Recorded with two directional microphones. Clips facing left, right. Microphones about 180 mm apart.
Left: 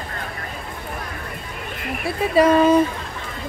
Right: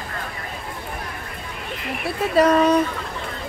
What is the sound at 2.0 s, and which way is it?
Speech, centre (ahead or behind).